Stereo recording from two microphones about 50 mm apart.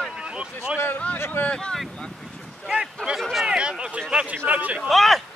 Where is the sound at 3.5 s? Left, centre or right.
Centre.